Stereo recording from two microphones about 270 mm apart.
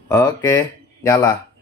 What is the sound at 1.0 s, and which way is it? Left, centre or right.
Speech, centre.